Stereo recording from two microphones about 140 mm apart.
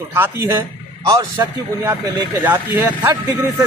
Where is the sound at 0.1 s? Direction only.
20° right (ahead or behind).